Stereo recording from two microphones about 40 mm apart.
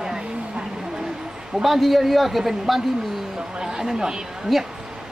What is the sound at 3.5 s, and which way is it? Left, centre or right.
Speech, centre.